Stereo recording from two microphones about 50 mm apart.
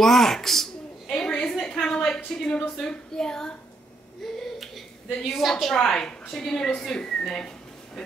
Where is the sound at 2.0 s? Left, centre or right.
Centre.